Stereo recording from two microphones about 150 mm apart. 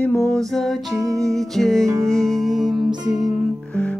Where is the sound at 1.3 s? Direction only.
Centre (ahead or behind).